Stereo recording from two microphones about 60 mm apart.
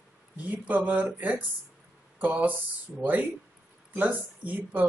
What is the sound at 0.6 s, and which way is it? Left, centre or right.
A woman's voice, right.